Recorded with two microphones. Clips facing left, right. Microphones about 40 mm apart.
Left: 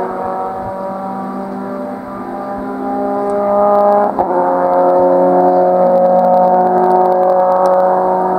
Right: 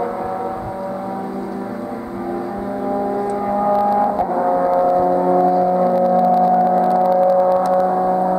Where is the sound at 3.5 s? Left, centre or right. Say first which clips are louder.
Left 7 dB; centre.